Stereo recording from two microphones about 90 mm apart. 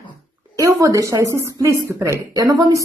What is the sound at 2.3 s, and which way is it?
Speech, 45° right (ahead or behind).